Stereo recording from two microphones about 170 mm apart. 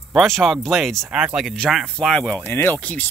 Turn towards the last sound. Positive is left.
turn(degrees=10)  # may be behind; listen again after turning